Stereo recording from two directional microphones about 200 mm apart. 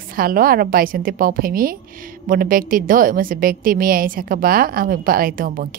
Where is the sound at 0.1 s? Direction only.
45° right (ahead or behind).